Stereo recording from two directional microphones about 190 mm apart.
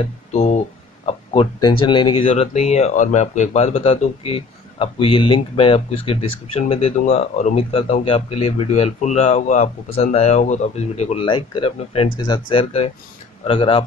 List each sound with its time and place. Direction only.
0.0 s speech: 35° left (ahead or behind)